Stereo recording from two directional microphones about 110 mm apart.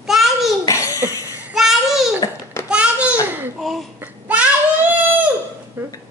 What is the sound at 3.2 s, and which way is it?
Laughter, 15° right (ahead or behind).